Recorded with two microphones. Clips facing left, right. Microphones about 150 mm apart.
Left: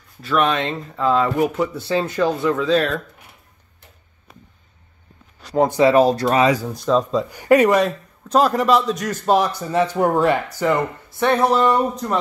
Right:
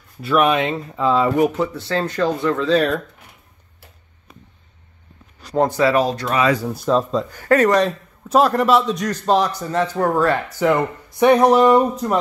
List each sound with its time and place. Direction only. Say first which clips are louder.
0.2 s speech: right 3 dB; 10° right (ahead or behind)
1.9 s speech: left 1 dB; 10° left (ahead or behind)
2.5 s speech: right 1 dB; centre (ahead or behind)
5.8 s speech: left 4 dB; 20° left (ahead or behind)
6.0 s speech: left 3 dB; 35° left (ahead or behind)
6.6 s speech: even; 5° right (ahead or behind)
7.2 s speech: left 2 dB; 15° left (ahead or behind)
8.3 s speech: right 1 dB; centre (ahead or behind); by 10.4 s 15° left (ahead or behind)
11.1 s speech: right 5 dB; 15° right (ahead or behind)